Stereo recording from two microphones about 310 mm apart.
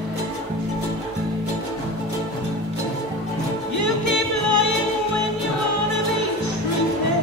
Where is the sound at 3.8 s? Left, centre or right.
Left.